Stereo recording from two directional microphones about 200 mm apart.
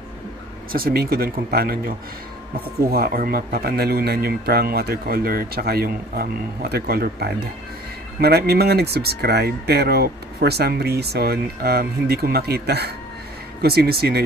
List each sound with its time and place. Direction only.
0.7 s speech: 50° right (ahead or behind)